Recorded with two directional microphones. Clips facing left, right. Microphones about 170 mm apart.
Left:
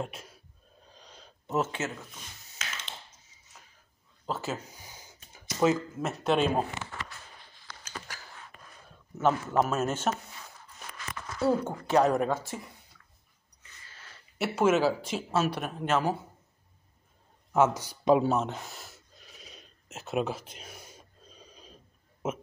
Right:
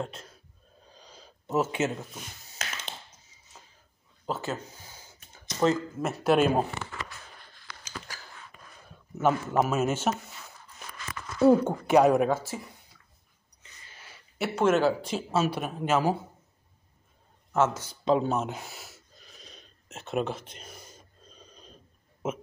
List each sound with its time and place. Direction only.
0.0 s speech: 10° left (ahead or behind)
0.9 s a sound: centre (ahead or behind)
1.8 s speech: 25° right (ahead or behind)
4.3 s speech: centre (ahead or behind)
4.7 s a sound: 15° left (ahead or behind); by 6.6 s 5° right (ahead or behind)
9.2 s speech: 10° right (ahead or behind)
11.4 s speech: 15° right (ahead or behind)
13.6 s a sound: 15° right (ahead or behind)
14.4 s speech: 5° left (ahead or behind)
17.5 s speech: 10° left (ahead or behind)
18.4 s gasp: 5° right (ahead or behind)
22.2 s speech: centre (ahead or behind)